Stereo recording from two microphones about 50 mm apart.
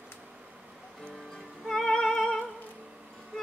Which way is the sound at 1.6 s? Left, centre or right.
Centre.